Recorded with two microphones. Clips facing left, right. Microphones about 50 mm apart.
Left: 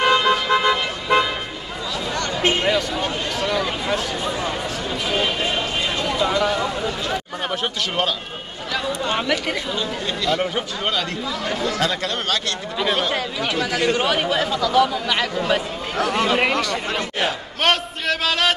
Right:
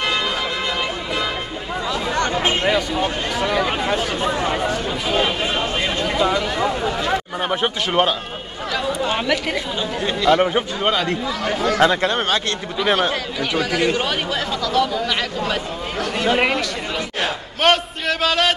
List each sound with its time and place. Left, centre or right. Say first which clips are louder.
0.0 s vehicle: left 4 dB; left
2.1 s a sound: right 1 dB; right
2.6 s speech: right 2 dB; centre
4.2 s speech: right 4 dB; right
5.1 s a man's voice: right 2 dB; centre
6.0 s a sound: right 3 dB; centre
6.5 s speech: right 2 dB; right
8.7 s speech: right 1 dB; centre
10.0 s speech: right 8 dB; centre
11.6 s speech: right 8 dB; right
13.6 s a man's voice: right 1 dB; centre